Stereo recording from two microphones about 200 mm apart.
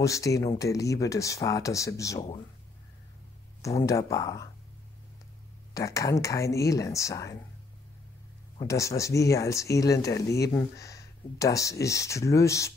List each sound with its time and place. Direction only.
0.0 s speech: 15° left (ahead or behind)
3.6 s speech: 15° left (ahead or behind)
5.8 s speech: 15° left (ahead or behind)
8.5 s speech: 15° left (ahead or behind)